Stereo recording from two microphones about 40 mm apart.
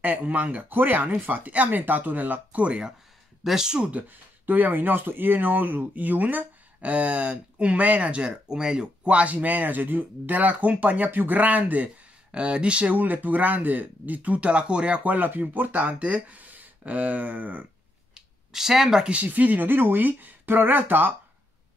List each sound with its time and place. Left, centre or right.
0.0 s speech: right
0.7 s speech: right
3.4 s speech: centre
3.9 s speech: right
8.5 s speech: centre
9.0 s speech: right
11.1 s speech: right
12.3 s speech: right
12.9 s speech: right
15.0 s speech: right
18.1 s a sound: centre
19.2 s speech: right